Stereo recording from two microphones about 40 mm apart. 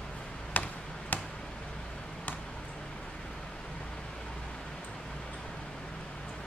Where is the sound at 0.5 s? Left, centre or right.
Left.